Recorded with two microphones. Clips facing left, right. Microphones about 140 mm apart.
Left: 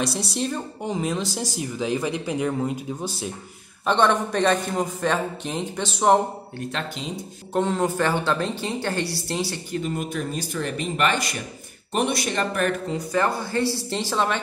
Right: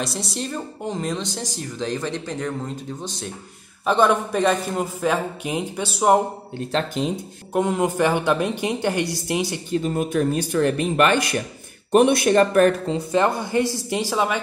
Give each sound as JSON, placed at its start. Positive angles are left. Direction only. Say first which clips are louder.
{"t": 0.0, "sound": "speech", "louder": "left 2 dB", "side_deg": 0}
{"t": 3.8, "sound": "a man's voice", "louder": "right 2 dB", "side_deg": -5}
{"t": 6.6, "sound": "speech", "louder": "right 2 dB", "side_deg": -30}
{"t": 7.5, "sound": "speech", "louder": "right 2 dB", "side_deg": -10}
{"t": 9.8, "sound": "speech", "louder": "right 8 dB", "side_deg": -45}
{"t": 12.9, "sound": "speech", "louder": "right 3 dB", "side_deg": -20}